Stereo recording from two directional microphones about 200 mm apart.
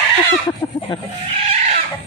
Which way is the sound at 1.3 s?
30° right (ahead or behind).